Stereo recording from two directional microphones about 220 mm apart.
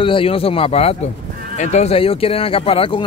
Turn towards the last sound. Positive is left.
turn(degrees=25)  # may be behind; listen again after turning